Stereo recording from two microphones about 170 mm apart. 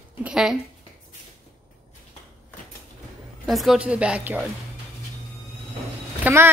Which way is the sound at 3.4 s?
Centre (ahead or behind).